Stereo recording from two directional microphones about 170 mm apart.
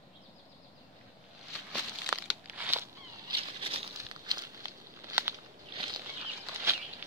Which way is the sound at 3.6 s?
35° right (ahead or behind).